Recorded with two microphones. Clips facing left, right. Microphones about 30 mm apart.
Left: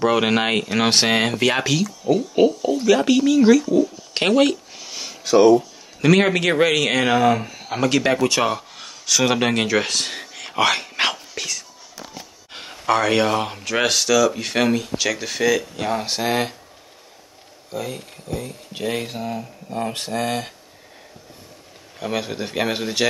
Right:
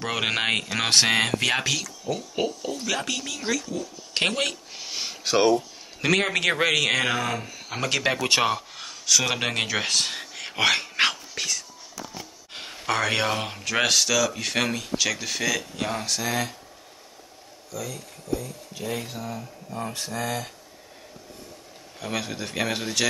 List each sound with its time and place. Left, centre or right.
0.0 s speech: centre
4.7 s a sound: centre
6.1 s speech: centre
7.7 s speech: centre
10.3 s a sound: centre
10.9 s whispering: centre
12.5 s speech: centre
16.1 s speech: left
17.6 s speech: left
22.0 s speech: centre